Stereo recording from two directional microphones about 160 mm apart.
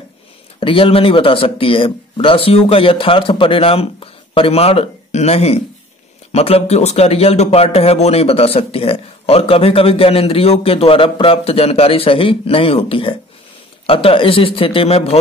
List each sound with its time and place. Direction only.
0.6 s a man's voice: 35° left (ahead or behind)